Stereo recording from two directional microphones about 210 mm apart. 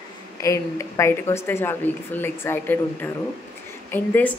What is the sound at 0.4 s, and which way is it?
Speech, 15° left (ahead or behind).